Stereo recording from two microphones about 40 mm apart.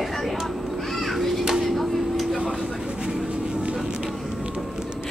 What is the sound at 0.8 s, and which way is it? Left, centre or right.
Children playing, centre.